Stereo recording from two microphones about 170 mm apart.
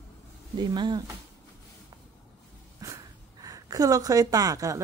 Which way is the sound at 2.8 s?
20° right (ahead or behind).